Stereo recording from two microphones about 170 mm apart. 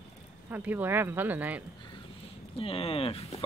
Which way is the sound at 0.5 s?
10° right (ahead or behind).